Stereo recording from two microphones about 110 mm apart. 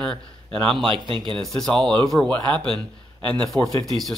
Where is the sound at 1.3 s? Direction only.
5° left (ahead or behind).